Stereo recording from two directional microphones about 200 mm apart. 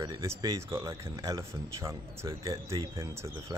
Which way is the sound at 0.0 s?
15° right (ahead or behind).